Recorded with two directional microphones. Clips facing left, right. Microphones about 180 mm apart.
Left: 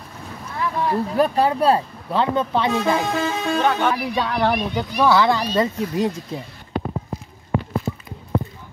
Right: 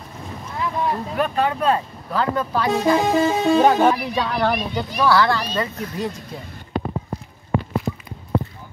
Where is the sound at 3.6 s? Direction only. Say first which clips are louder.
Right 4 dB; 35° right (ahead or behind).